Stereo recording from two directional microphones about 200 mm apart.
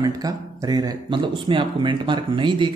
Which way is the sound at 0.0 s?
20° right (ahead or behind).